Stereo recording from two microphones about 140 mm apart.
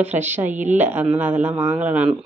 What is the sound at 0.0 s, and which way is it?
Speech, 10° right (ahead or behind).